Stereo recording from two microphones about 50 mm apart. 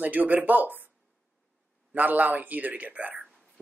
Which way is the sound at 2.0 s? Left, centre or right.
Right.